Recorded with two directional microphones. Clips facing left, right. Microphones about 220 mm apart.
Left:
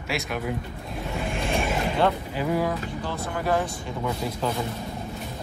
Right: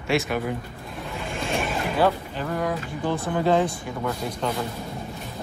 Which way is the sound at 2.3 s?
10° left (ahead or behind).